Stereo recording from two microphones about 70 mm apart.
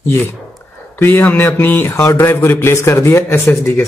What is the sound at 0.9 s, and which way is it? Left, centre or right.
Speech, left.